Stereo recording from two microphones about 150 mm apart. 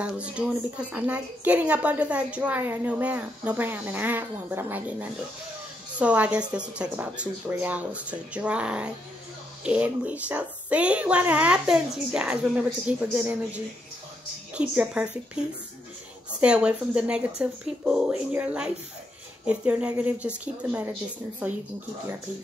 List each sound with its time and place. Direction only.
0.0 s a woman's voice: 10° right (ahead or behind)
5.9 s a woman's voice: 10° right (ahead or behind)